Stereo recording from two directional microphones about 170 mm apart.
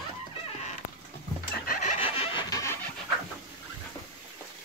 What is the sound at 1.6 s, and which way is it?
Chicken, 55° left (ahead or behind).